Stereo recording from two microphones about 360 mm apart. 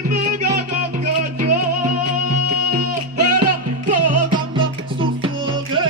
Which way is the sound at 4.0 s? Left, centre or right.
Right.